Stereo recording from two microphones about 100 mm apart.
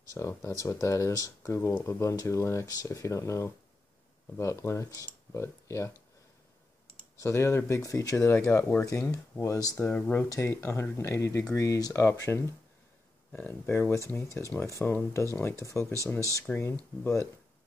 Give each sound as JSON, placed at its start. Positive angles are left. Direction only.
{"t": 0.1, "sound": "speech", "side_deg": 30}
{"t": 7.2, "sound": "speech", "side_deg": 25}
{"t": 9.9, "sound": "speech", "side_deg": 15}
{"t": 10.3, "sound": "speech", "side_deg": 25}